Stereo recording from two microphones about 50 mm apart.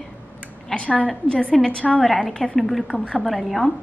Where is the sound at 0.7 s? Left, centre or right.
Left.